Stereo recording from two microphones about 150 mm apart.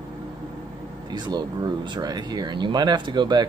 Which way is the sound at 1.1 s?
30° right (ahead or behind).